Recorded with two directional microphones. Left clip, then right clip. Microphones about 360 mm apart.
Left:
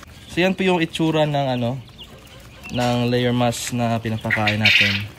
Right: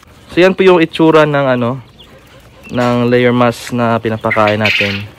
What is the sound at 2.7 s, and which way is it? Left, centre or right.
Speech, right.